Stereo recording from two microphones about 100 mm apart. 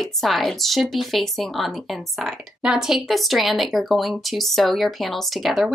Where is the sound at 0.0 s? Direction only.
Centre (ahead or behind).